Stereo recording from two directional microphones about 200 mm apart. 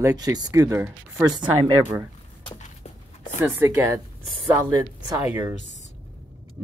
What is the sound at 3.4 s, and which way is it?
Speech, 15° right (ahead or behind).